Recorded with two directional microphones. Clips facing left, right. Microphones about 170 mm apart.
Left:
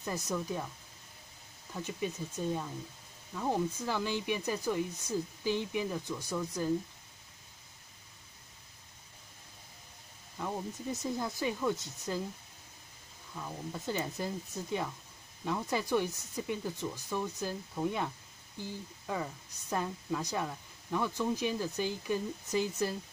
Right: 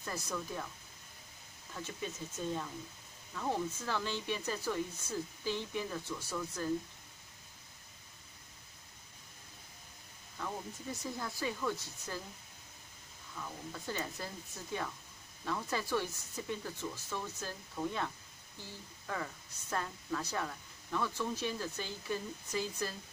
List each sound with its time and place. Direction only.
0.0 s speech: 20° left (ahead or behind)
1.7 s speech: 15° left (ahead or behind)
10.4 s speech: 20° left (ahead or behind)
13.4 s speech: 20° left (ahead or behind)